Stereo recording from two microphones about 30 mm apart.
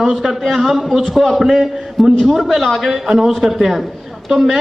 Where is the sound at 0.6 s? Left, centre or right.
Centre.